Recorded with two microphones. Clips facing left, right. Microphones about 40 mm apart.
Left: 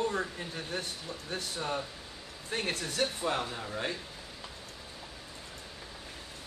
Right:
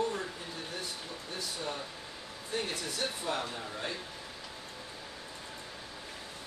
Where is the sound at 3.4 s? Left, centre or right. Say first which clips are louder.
Left 2 dB; left.